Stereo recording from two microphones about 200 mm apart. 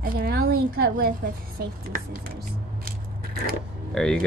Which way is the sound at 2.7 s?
50° right (ahead or behind).